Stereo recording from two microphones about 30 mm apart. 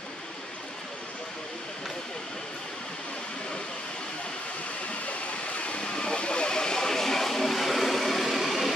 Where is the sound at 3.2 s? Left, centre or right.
Left.